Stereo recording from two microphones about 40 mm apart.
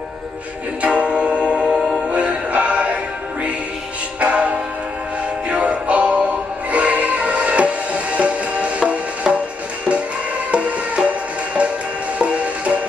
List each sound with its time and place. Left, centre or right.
0.8 s music: right
4.2 s music: right
10.5 s music: right
12.2 s music: right